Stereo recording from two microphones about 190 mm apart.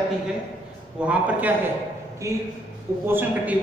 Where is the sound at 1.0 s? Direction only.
5° right (ahead or behind).